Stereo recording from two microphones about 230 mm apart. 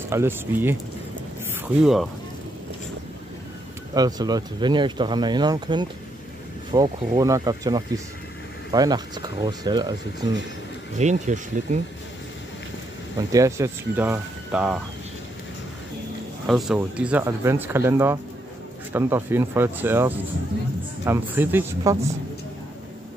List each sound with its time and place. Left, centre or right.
0.1 s speech: centre
3.9 s speech: centre
11.0 s speech: right
13.3 s speech: centre
16.4 s speech: centre